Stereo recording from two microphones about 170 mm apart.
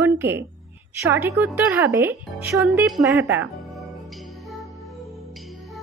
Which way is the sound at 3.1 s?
15° right (ahead or behind).